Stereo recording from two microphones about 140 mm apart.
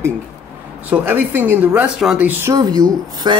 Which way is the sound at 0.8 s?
15° right (ahead or behind).